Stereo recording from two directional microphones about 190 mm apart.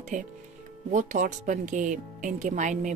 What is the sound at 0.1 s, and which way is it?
Speech, 45° right (ahead or behind).